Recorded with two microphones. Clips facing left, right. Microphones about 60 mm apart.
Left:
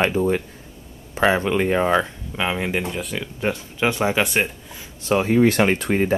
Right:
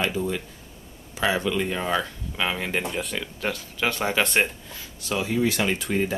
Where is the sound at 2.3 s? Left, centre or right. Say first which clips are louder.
Left 3 dB; centre.